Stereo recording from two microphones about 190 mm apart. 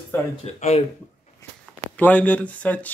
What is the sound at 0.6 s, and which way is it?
Speech, 35° left (ahead or behind).